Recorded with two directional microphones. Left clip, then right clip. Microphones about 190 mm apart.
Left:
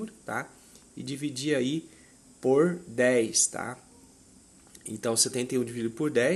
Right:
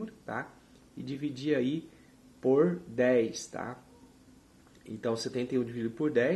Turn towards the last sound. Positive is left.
turn(degrees=30)  # may be behind; listen again after turning